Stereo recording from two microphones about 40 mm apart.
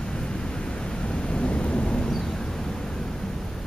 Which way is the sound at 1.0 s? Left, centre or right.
Left.